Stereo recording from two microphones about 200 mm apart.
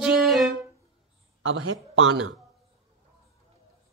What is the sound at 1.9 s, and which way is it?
Speech, 90° right.